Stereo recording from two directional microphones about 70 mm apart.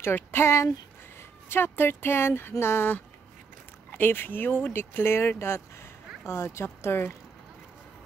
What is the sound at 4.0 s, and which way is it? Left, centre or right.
Speech, left.